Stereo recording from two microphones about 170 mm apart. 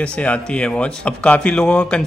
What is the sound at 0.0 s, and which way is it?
Speech, 5° left (ahead or behind).